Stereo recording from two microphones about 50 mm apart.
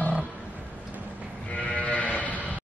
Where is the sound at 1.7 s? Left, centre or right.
Left.